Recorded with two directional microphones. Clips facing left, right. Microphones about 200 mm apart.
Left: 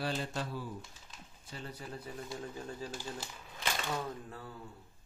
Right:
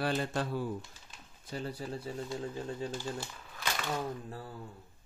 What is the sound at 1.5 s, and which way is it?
Speech, 35° right (ahead or behind).